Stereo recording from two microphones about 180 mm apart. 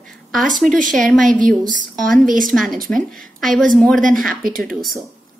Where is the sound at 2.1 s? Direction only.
50° right (ahead or behind).